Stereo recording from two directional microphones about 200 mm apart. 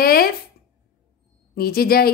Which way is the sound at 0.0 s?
50° left (ahead or behind).